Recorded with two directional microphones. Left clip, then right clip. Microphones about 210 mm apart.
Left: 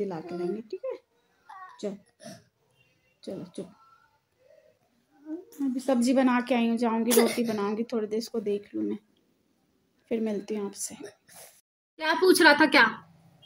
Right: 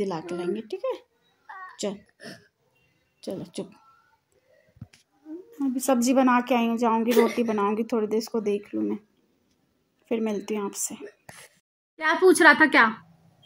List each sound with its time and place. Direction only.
0.0 s a child's voice: 45° right (ahead or behind)
2.1 s speech: centre (ahead or behind)
3.2 s speech: 40° right (ahead or behind)
5.6 s speech: 15° right (ahead or behind)
7.1 s speech: 50° left (ahead or behind)
7.3 s speech: 15° right (ahead or behind)
10.0 s speech: 10° right (ahead or behind)
12.3 s speech: 5° left (ahead or behind)